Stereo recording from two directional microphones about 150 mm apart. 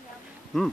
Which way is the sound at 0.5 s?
Centre (ahead or behind).